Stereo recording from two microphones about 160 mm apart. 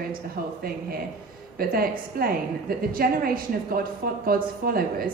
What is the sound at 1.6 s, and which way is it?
A woman's voice, 65° right (ahead or behind).